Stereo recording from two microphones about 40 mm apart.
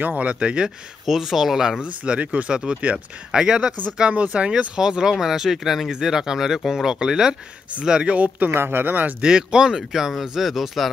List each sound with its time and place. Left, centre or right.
0.0 s speech: right
1.0 s speech: centre
2.1 s speech: right
2.5 s speech: centre
4.1 s speech: right
4.8 s speech: centre
8.5 s speech: right
9.2 s speech: right; by 10.9 s centre